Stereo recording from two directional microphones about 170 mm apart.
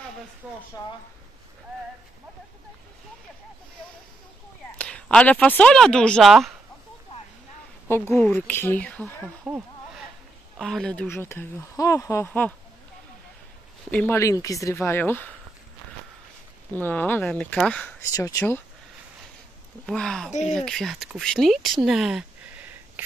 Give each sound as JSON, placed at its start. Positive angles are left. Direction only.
{"t": 0.4, "sound": "speech", "side_deg": -5}
{"t": 4.7, "sound": "speech", "side_deg": 5}
{"t": 8.1, "sound": "speech", "side_deg": 10}
{"t": 9.5, "sound": "speech", "side_deg": -5}
{"t": 13.8, "sound": "speech", "side_deg": 10}
{"t": 16.7, "sound": "speech", "side_deg": 10}
{"t": 18.0, "sound": "speech", "side_deg": 20}
{"t": 19.9, "sound": "speech", "side_deg": 5}
{"t": 20.2, "sound": "speech", "side_deg": 45}
{"t": 20.5, "sound": "speech", "side_deg": 0}